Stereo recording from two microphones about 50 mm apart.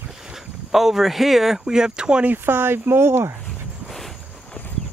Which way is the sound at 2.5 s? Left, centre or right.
Right.